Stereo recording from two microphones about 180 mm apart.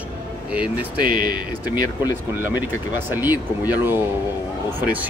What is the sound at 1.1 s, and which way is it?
Speech, 55° right (ahead or behind).